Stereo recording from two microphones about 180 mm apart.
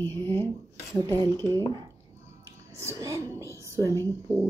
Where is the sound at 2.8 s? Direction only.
15° right (ahead or behind).